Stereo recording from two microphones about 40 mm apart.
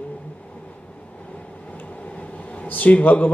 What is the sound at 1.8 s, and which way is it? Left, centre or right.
Vehicle, left.